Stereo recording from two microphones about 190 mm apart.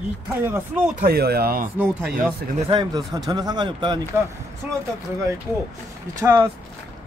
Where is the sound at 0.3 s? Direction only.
10° right (ahead or behind).